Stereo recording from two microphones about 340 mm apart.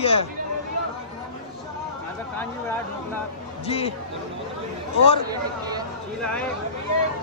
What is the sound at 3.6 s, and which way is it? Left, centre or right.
Speech, centre.